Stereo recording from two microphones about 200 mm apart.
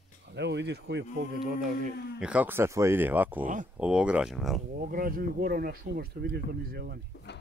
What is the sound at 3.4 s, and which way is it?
Speech, 40° right (ahead or behind).